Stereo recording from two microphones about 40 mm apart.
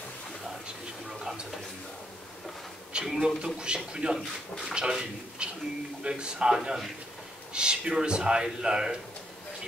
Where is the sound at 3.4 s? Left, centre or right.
Right.